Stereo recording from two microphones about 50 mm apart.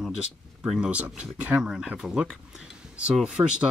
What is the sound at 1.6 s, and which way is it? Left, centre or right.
Speech, centre.